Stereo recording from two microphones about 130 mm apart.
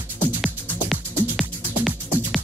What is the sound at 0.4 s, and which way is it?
Music, centre (ahead or behind).